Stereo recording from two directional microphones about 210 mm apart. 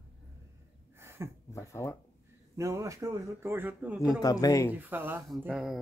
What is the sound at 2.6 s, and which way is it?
Speech, 15° right (ahead or behind).